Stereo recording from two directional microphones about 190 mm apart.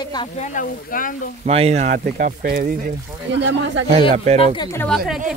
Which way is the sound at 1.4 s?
35° right (ahead or behind).